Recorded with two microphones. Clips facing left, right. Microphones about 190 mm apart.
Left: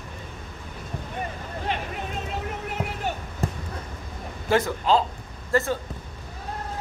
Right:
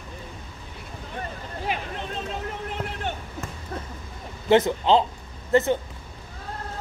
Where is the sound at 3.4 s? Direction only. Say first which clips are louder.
Left 8 dB; 35° left (ahead or behind).